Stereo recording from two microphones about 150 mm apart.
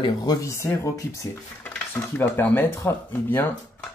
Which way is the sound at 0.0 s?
25° left (ahead or behind).